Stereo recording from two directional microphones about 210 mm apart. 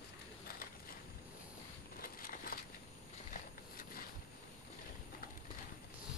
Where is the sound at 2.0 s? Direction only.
45° left (ahead or behind).